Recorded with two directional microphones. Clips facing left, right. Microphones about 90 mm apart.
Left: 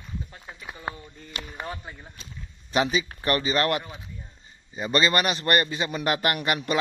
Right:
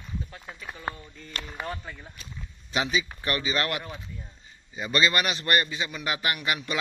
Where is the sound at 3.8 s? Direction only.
10° left (ahead or behind).